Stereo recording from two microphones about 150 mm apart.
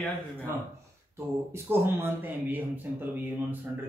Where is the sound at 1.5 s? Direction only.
15° right (ahead or behind).